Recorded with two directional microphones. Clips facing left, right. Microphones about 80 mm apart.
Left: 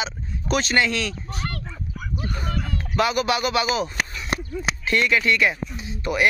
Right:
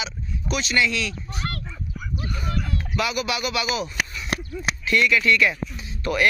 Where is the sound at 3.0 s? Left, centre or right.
Left.